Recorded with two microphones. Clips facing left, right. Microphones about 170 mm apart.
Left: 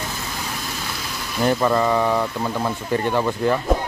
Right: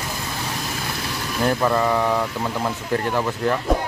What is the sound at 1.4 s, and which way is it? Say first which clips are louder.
Speech: left 1 dB; centre (ahead or behind).